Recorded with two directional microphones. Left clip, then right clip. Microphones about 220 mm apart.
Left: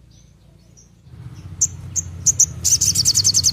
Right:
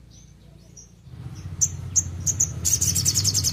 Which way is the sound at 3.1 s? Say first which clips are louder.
Left 8 dB; 20° left (ahead or behind).